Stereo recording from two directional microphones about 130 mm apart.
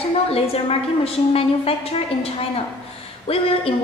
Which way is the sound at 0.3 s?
50° left (ahead or behind).